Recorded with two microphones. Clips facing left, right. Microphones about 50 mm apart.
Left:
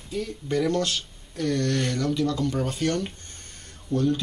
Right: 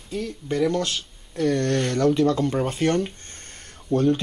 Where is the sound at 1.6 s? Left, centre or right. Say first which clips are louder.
Right 4 dB; right.